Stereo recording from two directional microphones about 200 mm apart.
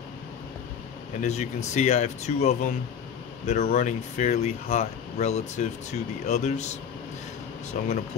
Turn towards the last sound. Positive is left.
turn(degrees=40)  # may be behind; listen again after turning